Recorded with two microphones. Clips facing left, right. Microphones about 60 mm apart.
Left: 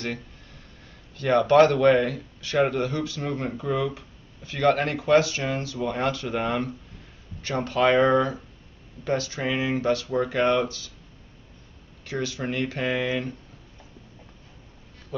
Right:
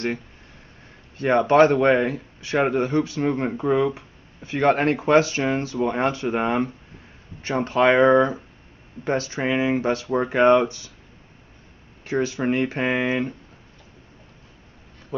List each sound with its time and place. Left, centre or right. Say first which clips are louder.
1.1 s speech: right 1 dB; right
12.0 s speech: right 6 dB; right